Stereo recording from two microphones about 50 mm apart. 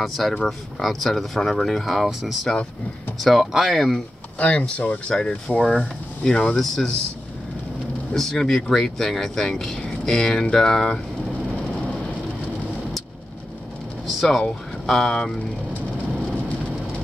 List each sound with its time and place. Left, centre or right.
0.0 s speech: centre
3.2 s speech: centre
4.4 s speech: left; by 7.0 s centre
8.1 s speech: centre
14.0 s a sound: centre
14.9 s speech: centre